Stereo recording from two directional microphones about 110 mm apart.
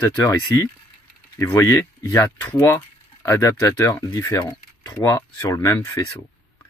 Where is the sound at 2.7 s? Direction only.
30° left (ahead or behind).